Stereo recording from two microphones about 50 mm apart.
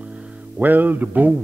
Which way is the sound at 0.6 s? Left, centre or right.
Right.